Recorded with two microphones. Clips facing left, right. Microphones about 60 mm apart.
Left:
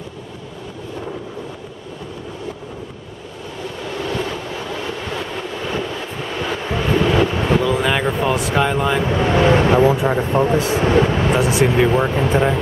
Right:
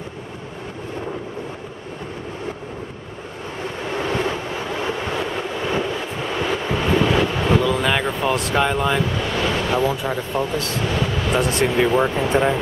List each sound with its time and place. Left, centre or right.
3.8 s waves: right
6.7 s vehicle: centre
7.1 s vehicle: centre
9.0 s speech: left
11.3 s speech: centre